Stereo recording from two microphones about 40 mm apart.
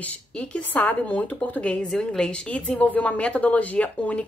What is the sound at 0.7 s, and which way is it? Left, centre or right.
A woman's voice, left.